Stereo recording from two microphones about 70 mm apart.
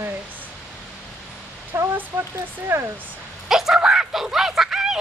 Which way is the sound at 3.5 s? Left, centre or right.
Centre.